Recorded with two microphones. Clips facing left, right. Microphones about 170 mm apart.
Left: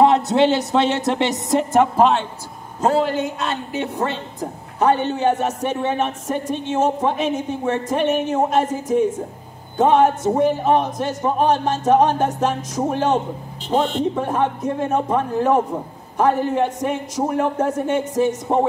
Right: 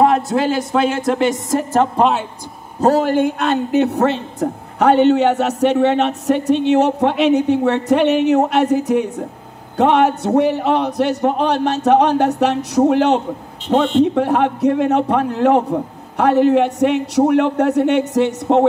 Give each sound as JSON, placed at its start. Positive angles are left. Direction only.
{"t": 0.4, "sound": "speech", "side_deg": 25}
{"t": 2.0, "sound": "speech", "side_deg": 0}
{"t": 2.8, "sound": "a man's voice", "side_deg": -40}